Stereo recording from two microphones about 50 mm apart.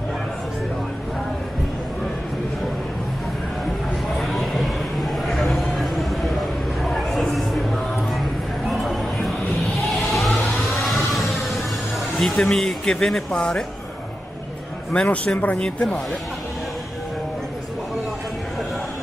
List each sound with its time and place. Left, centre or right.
4.2 s a sound: centre
10.1 s vehicle: centre
12.4 s speech: centre
14.9 s a man's voice: left
15.5 s a man's voice: centre